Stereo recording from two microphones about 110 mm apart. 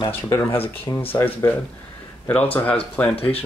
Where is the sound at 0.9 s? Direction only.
30° left (ahead or behind).